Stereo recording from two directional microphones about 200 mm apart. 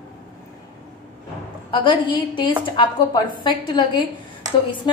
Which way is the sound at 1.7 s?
25° left (ahead or behind).